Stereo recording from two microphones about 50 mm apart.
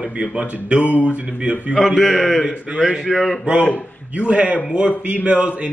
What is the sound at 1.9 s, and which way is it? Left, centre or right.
Speech, centre.